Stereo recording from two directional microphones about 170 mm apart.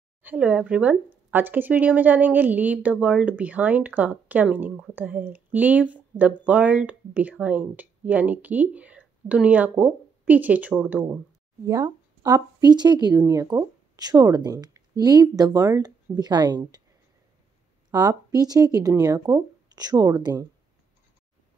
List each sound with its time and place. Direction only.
0.2 s speech: 10° right (ahead or behind)
11.6 s speech: 20° right (ahead or behind)
17.9 s speech: 20° right (ahead or behind)